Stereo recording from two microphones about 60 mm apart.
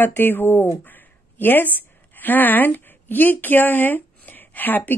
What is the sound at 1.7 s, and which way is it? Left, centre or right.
A woman's voice, left.